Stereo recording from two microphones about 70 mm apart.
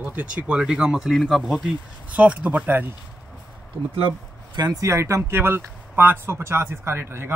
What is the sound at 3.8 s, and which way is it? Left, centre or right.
Speech, centre.